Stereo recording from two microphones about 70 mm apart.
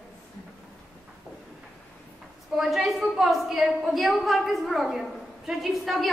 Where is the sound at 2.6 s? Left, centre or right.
Centre.